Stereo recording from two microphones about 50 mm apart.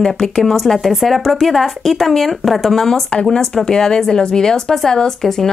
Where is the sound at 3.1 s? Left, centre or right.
Centre.